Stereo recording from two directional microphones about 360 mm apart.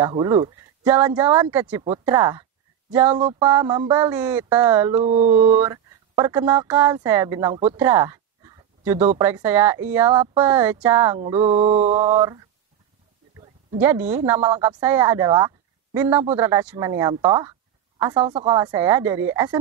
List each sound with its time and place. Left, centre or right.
0.0 s a woman's voice: centre
3.4 s speech: centre
5.0 s a woman's voice: centre
5.3 s a woman's voice: centre
11.5 s a woman's voice: centre